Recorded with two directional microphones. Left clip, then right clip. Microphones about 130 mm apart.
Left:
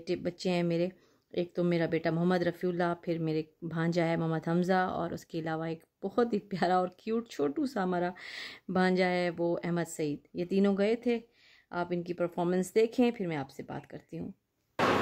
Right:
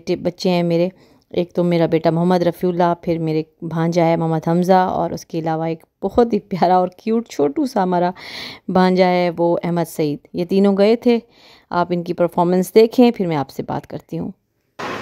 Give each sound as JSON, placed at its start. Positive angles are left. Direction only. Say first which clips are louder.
{"t": 0.0, "sound": "speech", "louder": "right 14 dB", "side_deg": -50}